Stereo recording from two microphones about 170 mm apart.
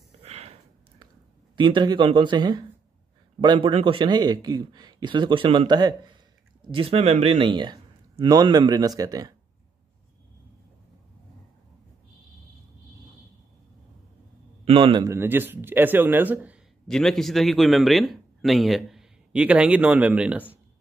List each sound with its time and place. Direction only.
0.2 s a sound: 40° right (ahead or behind)
1.6 s a man's voice: 25° right (ahead or behind)
14.6 s a man's voice: 35° right (ahead or behind)
15.0 s speech: 15° right (ahead or behind)
16.8 s a man's voice: centre (ahead or behind)